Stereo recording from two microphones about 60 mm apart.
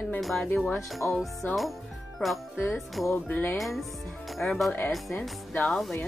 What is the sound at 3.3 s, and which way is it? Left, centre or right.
Music, left.